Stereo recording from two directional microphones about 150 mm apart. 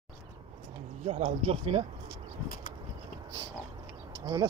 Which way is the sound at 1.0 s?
45° right (ahead or behind).